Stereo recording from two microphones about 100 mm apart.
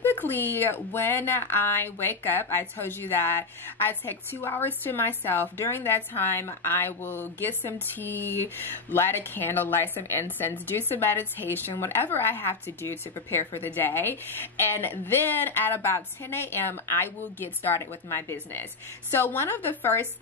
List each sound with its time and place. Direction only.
0.0 s speech: 20° left (ahead or behind)